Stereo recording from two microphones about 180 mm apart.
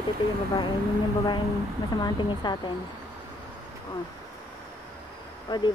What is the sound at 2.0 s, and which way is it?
Speech, 25° left (ahead or behind).